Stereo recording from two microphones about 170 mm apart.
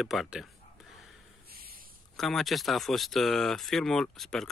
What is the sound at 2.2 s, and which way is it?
Speech, centre (ahead or behind).